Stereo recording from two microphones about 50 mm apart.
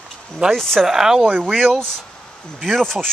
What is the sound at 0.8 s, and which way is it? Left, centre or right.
Speech, centre.